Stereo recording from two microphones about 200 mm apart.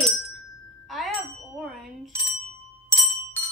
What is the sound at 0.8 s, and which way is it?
Music, centre (ahead or behind).